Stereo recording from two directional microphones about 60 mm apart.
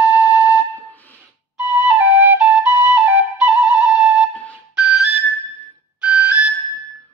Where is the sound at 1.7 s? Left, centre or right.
Right.